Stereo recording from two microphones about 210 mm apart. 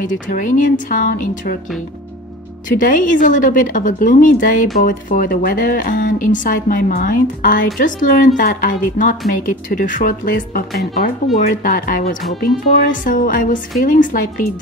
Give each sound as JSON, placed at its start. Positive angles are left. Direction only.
{"t": 0.0, "sound": "speech", "side_deg": 40}
{"t": 2.8, "sound": "speech", "side_deg": 40}
{"t": 11.3, "sound": "speech", "side_deg": 0}
{"t": 11.6, "sound": "speech", "side_deg": 45}